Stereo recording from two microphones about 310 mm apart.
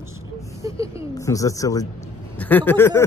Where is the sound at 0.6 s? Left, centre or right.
Centre.